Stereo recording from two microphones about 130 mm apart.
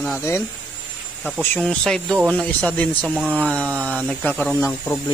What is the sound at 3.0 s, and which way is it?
Speech, 10° right (ahead or behind).